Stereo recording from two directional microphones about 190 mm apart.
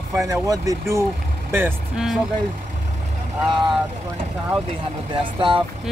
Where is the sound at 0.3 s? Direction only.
15° right (ahead or behind).